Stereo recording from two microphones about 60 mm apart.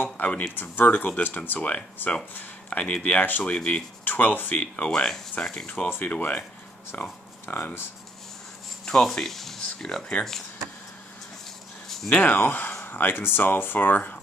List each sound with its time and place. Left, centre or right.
0.0 s speech: left
3.5 s speech: centre
4.0 s speech: left
8.8 s speech: centre
12.1 s speech: left